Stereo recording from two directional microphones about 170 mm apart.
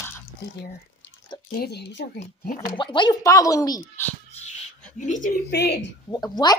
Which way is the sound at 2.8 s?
30° left (ahead or behind).